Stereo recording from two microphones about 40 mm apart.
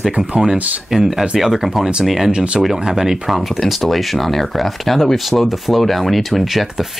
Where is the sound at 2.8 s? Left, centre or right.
Centre.